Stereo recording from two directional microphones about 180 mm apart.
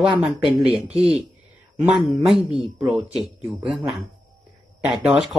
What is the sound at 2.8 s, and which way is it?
Speech, 5° right (ahead or behind).